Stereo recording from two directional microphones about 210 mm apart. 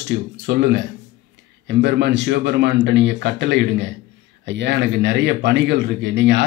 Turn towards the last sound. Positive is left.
turn(degrees=-55)  # may be behind; listen again after turning